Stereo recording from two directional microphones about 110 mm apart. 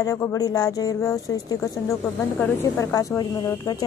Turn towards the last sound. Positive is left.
turn(degrees=35)  # may be behind; listen again after turning